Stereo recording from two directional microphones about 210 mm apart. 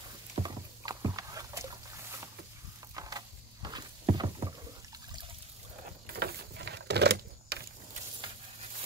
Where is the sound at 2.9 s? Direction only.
20° right (ahead or behind).